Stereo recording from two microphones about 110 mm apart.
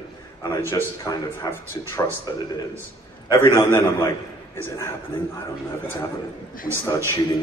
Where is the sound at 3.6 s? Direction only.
25° left (ahead or behind).